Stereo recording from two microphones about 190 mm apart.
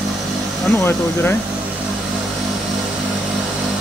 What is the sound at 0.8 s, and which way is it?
Speech, 10° left (ahead or behind).